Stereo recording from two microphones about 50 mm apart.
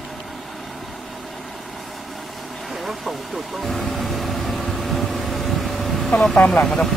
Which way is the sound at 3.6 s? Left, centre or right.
Centre.